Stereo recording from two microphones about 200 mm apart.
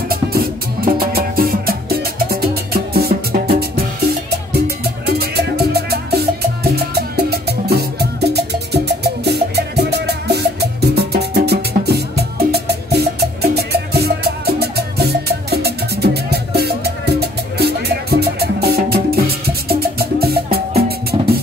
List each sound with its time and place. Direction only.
0.9 s music: 50° right (ahead or behind)